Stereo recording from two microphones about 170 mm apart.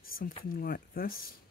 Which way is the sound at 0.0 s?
60° left (ahead or behind).